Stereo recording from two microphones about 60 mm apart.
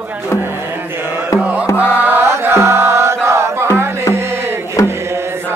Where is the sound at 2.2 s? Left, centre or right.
Right.